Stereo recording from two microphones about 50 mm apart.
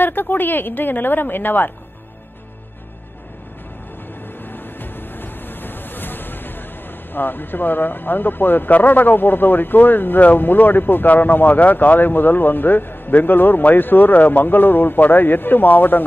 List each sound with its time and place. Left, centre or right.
0.0 s a woman's voice: left
4.5 s music: left
7.1 s speech: left